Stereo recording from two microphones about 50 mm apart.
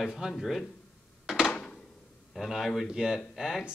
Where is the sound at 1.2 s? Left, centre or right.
Centre.